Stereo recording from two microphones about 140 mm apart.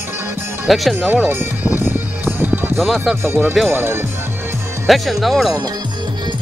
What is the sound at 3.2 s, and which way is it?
Speech, 15° right (ahead or behind).